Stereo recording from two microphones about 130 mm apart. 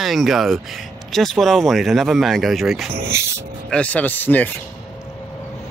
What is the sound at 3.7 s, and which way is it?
Speech, 10° left (ahead or behind).